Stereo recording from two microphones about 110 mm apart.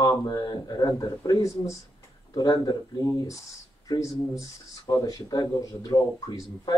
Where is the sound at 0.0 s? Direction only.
30° left (ahead or behind).